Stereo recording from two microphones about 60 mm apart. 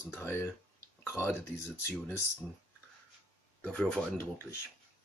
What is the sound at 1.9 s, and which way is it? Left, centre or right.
Speech, left.